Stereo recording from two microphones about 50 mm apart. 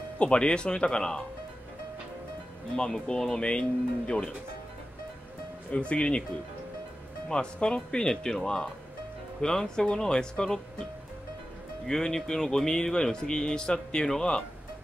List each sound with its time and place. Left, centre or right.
0.2 s speech: centre
2.7 s speech: centre
5.7 s speech: left
7.2 s speech: centre
11.9 s speech: centre